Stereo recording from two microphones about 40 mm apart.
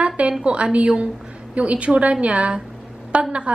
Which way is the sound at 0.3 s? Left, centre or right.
Right.